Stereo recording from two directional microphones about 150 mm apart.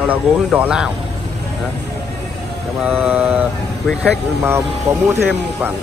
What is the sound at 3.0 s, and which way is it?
Speech, 10° right (ahead or behind).